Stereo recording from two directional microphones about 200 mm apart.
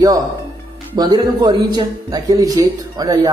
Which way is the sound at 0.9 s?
20° right (ahead or behind).